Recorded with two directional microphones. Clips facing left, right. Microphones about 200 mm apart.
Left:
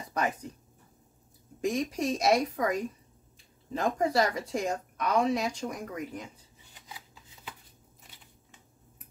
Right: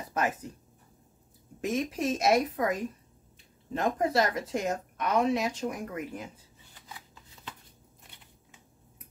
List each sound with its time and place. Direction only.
1.6 s a woman's voice: centre (ahead or behind)